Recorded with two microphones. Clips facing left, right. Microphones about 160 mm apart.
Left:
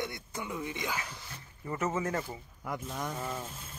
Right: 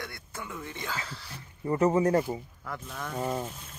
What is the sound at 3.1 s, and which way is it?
Speech, 35° right (ahead or behind).